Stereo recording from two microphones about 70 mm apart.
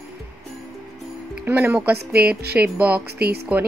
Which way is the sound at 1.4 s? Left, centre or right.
Right.